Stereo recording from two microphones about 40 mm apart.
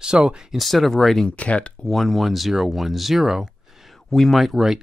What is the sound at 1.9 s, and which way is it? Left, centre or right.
Speech, centre.